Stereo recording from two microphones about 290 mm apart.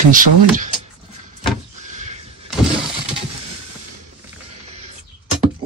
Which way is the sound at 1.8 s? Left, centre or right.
Right.